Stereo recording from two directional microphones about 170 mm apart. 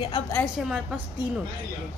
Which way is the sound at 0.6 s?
Centre (ahead or behind).